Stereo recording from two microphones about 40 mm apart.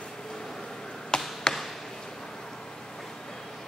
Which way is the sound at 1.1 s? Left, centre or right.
Centre.